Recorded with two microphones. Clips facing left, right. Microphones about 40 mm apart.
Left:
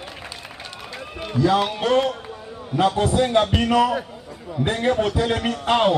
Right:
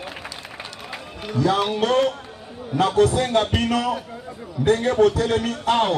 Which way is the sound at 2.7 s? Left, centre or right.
Left.